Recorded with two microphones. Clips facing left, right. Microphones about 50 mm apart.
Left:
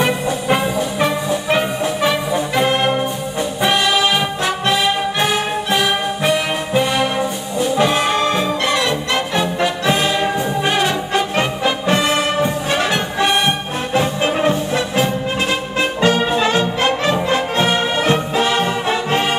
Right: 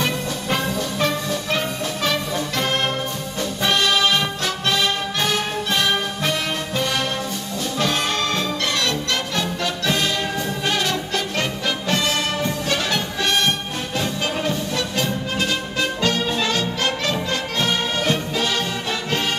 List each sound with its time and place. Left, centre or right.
0.0 s music: centre